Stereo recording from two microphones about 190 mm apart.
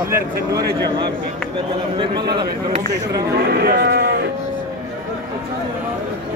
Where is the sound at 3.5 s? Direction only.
55° right (ahead or behind).